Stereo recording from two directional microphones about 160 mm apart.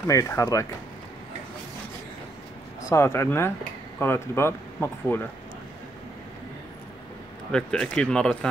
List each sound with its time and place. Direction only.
0.0 s speech: 15° left (ahead or behind)
2.9 s speech: 15° left (ahead or behind)
7.5 s speech: 5° left (ahead or behind)